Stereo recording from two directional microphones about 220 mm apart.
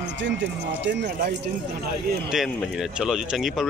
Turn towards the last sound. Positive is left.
turn(degrees=0)  # may be behind; listen again after turning